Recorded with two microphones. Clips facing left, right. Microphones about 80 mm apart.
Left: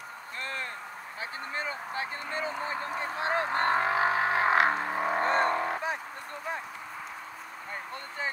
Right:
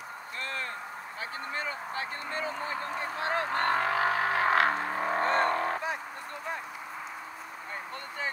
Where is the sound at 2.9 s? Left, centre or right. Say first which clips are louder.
Left 2 dB; centre.